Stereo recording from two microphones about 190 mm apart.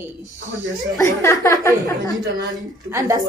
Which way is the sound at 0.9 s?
15° left (ahead or behind).